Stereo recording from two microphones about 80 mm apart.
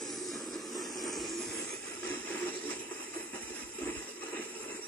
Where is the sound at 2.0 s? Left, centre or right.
Left.